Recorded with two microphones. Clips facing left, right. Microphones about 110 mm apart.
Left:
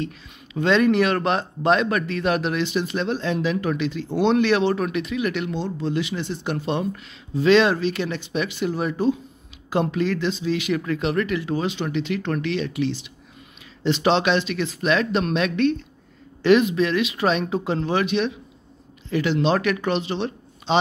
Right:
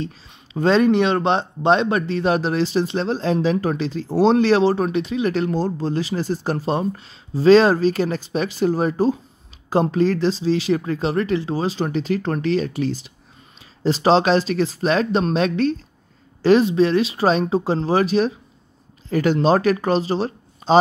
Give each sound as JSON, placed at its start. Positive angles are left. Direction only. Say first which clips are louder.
{"t": 0.0, "sound": "speech", "louder": "even", "side_deg": -35}